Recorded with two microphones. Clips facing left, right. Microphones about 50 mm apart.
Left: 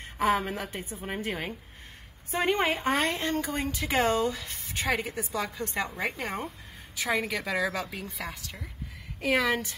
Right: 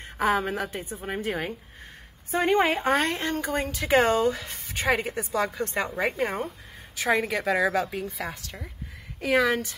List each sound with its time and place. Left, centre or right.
0.2 s a woman's voice: centre
0.7 s a woman's voice: right
1.0 s speech: centre
2.5 s a woman's voice: centre
2.8 s a woman's voice: right
6.1 s a woman's voice: centre
7.0 s speech: right
7.9 s speech: centre